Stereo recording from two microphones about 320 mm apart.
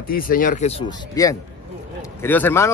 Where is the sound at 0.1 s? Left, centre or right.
Left.